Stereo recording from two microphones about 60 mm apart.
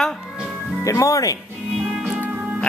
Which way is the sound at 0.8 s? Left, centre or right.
Left.